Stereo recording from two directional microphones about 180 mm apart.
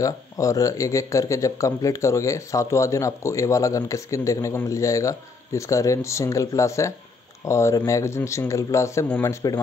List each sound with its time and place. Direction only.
0.0 s speech: 20° left (ahead or behind)